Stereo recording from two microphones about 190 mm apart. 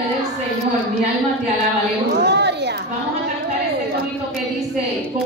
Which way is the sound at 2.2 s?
65° right (ahead or behind).